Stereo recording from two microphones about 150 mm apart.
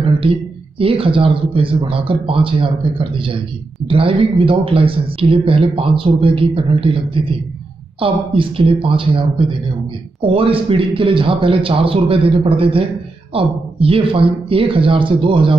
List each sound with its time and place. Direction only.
0.2 s a man's voice: 35° right (ahead or behind)